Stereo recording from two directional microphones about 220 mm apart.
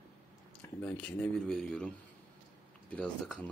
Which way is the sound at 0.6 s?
10° left (ahead or behind).